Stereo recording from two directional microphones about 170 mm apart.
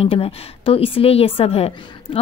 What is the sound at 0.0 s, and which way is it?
A woman's voice, 35° left (ahead or behind).